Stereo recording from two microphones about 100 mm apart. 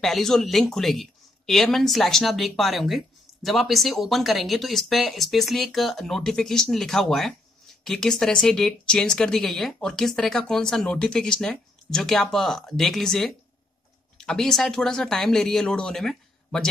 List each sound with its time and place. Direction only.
0.0 s speech: 5° left (ahead or behind)